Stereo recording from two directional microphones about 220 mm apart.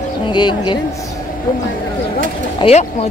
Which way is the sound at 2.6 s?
30° left (ahead or behind).